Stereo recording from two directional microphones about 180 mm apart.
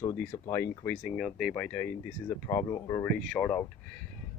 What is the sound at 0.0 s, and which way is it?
Speech, 15° left (ahead or behind).